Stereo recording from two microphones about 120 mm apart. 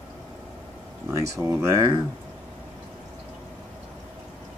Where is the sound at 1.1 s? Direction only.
25° right (ahead or behind).